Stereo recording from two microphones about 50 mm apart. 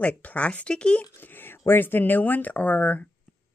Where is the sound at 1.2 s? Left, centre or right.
Left.